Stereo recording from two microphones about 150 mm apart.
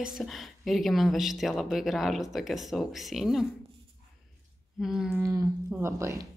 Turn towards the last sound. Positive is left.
turn(degrees=-20)  # may be behind; listen again after turning